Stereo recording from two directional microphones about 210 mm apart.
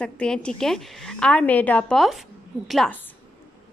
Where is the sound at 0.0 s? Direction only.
5° left (ahead or behind).